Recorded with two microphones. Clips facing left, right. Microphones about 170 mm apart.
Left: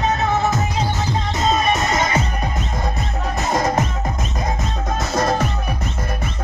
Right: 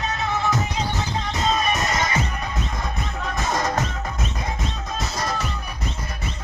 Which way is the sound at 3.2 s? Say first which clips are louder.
Left 4 dB; 35° left (ahead or behind).